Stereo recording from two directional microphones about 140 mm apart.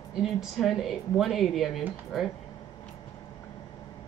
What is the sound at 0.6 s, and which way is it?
Speech, centre (ahead or behind).